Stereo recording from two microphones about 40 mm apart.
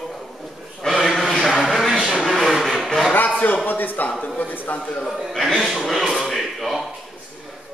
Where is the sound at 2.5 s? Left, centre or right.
Centre.